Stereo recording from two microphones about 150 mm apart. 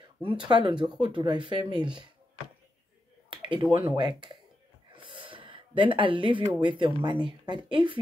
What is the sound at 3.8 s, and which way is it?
Speech, 30° right (ahead or behind).